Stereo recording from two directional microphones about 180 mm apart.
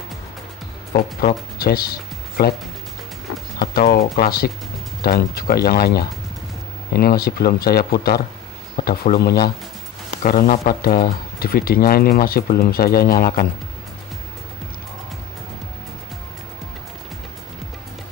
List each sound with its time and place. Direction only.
0.9 s speech: 60° left (ahead or behind)
3.7 s speech: 55° left (ahead or behind)
10.2 s a man's voice: 50° left (ahead or behind)